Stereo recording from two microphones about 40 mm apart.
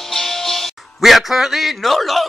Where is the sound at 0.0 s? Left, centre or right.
Centre.